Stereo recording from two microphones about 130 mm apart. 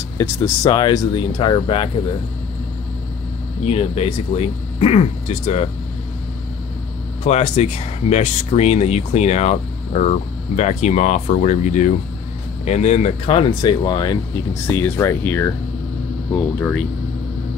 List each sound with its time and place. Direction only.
0.2 s speech: 20° left (ahead or behind)
0.7 s speech: 35° left (ahead or behind)
3.6 s speech: 50° left (ahead or behind)
7.2 s speech: 55° left (ahead or behind)
13.5 s speech: 35° left (ahead or behind)
14.5 s speech: 20° left (ahead or behind)